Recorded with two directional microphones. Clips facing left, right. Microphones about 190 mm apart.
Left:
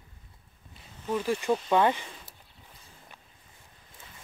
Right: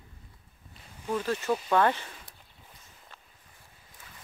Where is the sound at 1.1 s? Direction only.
10° left (ahead or behind).